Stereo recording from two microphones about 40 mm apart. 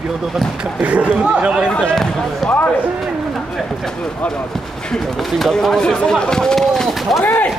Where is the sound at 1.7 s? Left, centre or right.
Left.